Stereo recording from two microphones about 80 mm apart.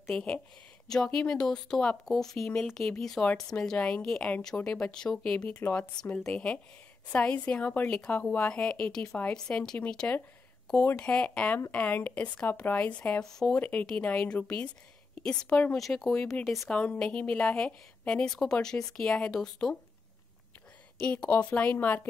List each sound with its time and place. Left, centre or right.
0.0 s a woman's voice: centre
5.5 s speech: centre
9.0 s speech: left
9.3 s speech: centre
13.6 s a woman's voice: centre
16.7 s speech: centre
21.0 s speech: centre